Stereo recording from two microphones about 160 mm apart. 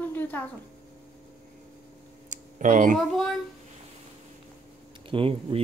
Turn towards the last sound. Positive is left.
turn(degrees=-35)  # may be behind; listen again after turning